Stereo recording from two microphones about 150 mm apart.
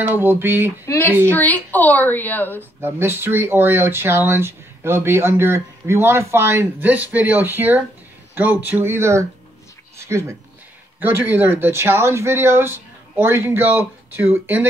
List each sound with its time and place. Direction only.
0.0 s speech: 15° right (ahead or behind)
0.8 s a woman's voice: 15° left (ahead or behind)
2.8 s speech: 15° right (ahead or behind)